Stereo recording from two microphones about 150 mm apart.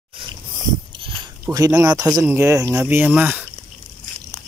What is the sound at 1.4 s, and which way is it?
Speech, 25° right (ahead or behind).